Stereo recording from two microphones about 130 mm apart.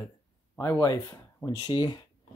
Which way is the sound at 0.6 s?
25° left (ahead or behind).